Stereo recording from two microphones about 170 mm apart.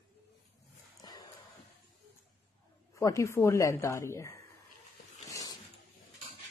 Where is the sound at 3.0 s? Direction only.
20° left (ahead or behind).